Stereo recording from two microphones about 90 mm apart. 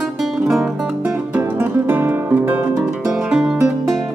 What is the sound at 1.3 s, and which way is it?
Music, 20° right (ahead or behind).